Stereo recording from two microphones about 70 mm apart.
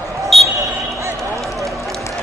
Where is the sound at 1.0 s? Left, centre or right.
Right.